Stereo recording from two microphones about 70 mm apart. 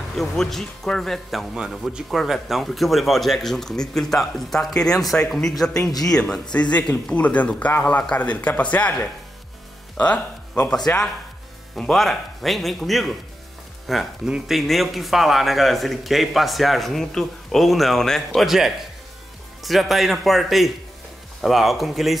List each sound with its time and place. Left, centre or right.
0.2 s speech: centre
11.7 s speech: centre